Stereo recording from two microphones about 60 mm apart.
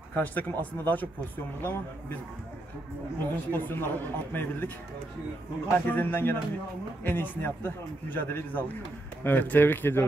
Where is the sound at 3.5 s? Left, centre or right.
Left.